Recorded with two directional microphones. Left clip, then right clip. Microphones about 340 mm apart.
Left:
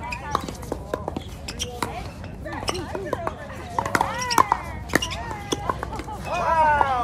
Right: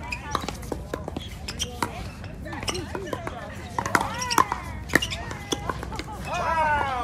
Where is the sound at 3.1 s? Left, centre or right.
Centre.